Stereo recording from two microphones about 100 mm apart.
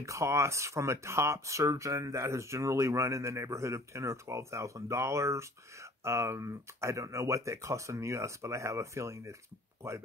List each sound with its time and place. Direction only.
0.0 s speech: 30° right (ahead or behind)